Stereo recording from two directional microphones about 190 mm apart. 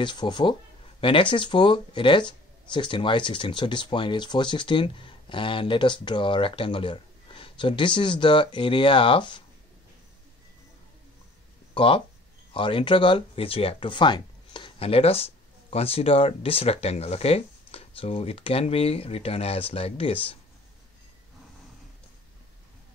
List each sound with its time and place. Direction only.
0.0 s speech: 25° left (ahead or behind)
11.7 s speech: 25° left (ahead or behind)